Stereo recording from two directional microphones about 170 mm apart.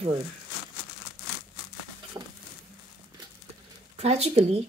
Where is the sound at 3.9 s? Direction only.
40° right (ahead or behind).